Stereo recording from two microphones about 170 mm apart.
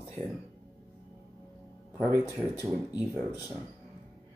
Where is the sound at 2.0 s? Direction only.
15° right (ahead or behind).